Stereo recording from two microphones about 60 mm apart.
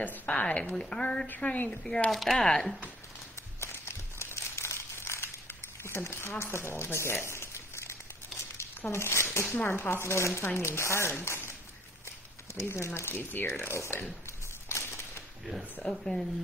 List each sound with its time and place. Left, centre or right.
0.3 s a woman's voice: centre
2.0 s speech: centre
3.6 s crumpling: left
7.2 s a sound: left
8.9 s speech: left
12.5 s speech: left
14.7 s a sound: left
15.8 s a woman's voice: centre